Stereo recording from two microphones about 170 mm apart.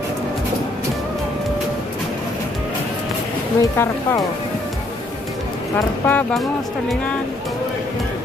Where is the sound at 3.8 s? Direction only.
15° left (ahead or behind).